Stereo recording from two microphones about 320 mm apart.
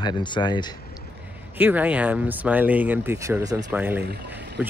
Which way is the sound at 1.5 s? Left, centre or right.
Centre.